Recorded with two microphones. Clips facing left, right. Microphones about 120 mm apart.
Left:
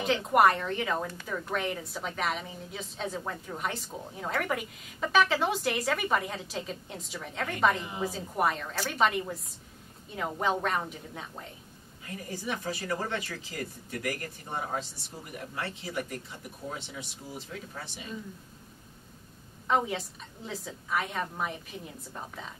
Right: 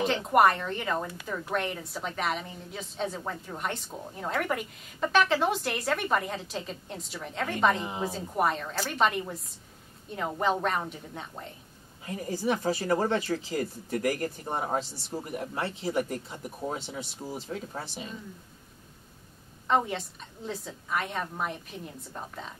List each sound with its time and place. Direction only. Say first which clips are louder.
0.0 s a woman's voice: right 1 dB; centre (ahead or behind)
12.4 s speech: right 7 dB; 35° right (ahead or behind)
19.7 s a woman's voice: right 1 dB; centre (ahead or behind)